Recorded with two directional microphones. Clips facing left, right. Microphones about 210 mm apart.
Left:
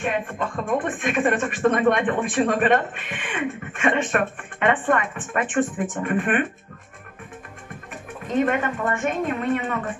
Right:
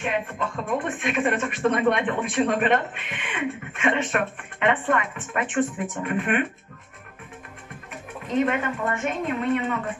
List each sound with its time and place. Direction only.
0.0 s speech: 45° left (ahead or behind)
8.3 s speech: 50° left (ahead or behind)